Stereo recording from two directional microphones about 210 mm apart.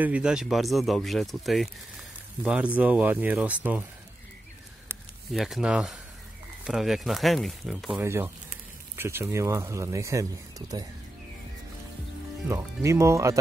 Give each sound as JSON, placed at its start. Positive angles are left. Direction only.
{"t": 0.0, "sound": "speech", "side_deg": -5}
{"t": 4.8, "sound": "a sound", "side_deg": 0}
{"t": 6.6, "sound": "speech", "side_deg": 0}
{"t": 8.0, "sound": "speech", "side_deg": -15}
{"t": 12.4, "sound": "speech", "side_deg": -15}